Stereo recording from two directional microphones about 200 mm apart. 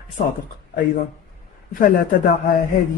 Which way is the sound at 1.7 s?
45° left (ahead or behind).